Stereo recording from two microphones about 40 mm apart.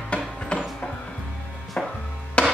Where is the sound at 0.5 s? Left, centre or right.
Left.